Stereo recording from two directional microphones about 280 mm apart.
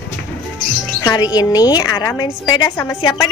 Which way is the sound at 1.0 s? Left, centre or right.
Centre.